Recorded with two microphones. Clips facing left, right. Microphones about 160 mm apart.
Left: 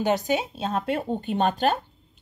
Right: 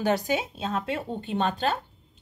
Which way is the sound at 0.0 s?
25° left (ahead or behind).